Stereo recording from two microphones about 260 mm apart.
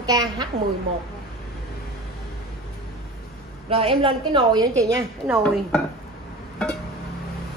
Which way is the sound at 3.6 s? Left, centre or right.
Right.